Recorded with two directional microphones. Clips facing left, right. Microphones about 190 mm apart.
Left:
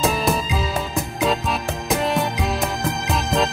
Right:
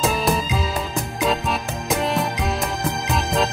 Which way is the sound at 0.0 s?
Centre (ahead or behind).